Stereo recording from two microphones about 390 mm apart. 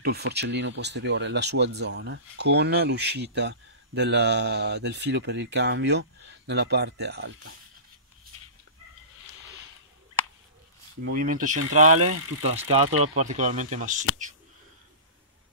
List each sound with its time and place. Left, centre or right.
0.0 s speech: right
11.1 s speech: right